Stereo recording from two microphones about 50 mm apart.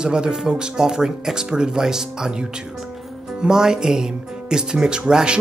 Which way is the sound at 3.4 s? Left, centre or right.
Centre.